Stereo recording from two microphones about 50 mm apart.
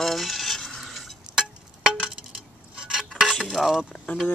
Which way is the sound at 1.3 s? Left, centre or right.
Centre.